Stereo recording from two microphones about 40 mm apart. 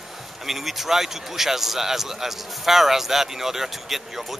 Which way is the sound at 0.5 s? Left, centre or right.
Centre.